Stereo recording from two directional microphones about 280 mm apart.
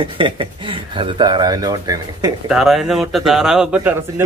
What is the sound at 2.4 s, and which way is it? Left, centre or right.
Speech, centre.